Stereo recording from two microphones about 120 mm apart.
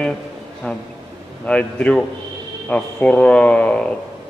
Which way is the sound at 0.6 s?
10° left (ahead or behind).